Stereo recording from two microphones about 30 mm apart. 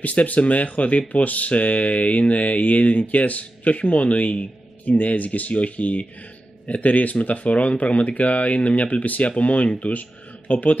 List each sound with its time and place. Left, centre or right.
0.0 s speech: left
9.2 s speech: left